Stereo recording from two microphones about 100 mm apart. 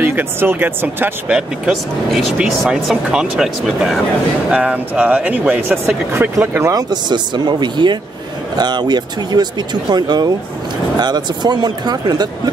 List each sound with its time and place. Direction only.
0.0 s speech: 20° right (ahead or behind)
1.3 s speech: centre (ahead or behind); by 6.7 s 25° right (ahead or behind)
6.7 s speech: 45° right (ahead or behind)